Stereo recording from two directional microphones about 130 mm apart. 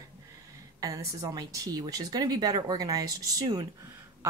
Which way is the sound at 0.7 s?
25° right (ahead or behind).